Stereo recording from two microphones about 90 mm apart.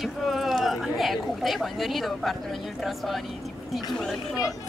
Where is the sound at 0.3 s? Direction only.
Centre (ahead or behind).